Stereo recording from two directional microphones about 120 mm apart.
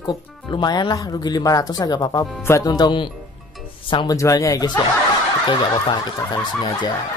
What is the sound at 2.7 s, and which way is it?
Speech, 40° left (ahead or behind).